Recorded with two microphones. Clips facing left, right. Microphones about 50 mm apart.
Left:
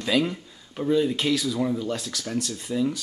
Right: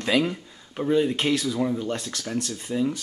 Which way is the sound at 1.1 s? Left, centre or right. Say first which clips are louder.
Even; right.